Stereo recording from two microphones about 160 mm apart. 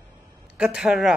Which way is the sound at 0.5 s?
5° right (ahead or behind).